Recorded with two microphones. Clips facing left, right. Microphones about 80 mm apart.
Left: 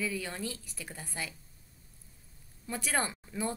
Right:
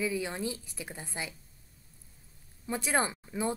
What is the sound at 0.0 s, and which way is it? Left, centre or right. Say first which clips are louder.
Speech: right 4 dB; centre.